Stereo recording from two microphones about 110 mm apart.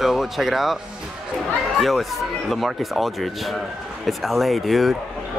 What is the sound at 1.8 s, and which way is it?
Speech, centre (ahead or behind).